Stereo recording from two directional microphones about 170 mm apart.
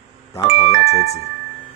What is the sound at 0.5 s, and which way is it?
Speech, 40° left (ahead or behind).